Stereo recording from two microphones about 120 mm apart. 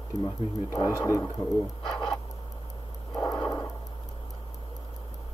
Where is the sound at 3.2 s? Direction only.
35° left (ahead or behind).